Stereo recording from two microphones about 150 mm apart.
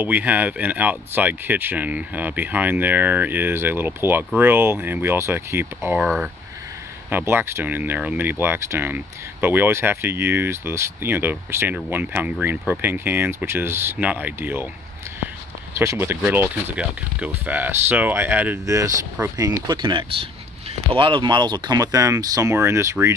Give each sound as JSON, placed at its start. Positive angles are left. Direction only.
{"t": 0.0, "sound": "speech", "side_deg": -10}
{"t": 15.8, "sound": "speech", "side_deg": -20}